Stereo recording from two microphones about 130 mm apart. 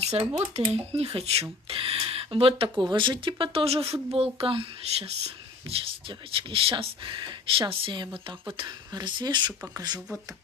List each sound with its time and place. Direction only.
0.0 s speech: 55° right (ahead or behind); by 9.5 s 35° right (ahead or behind)
9.9 s speech: 5° right (ahead or behind)